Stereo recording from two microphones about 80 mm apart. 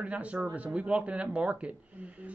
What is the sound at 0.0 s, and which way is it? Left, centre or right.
Speech, centre.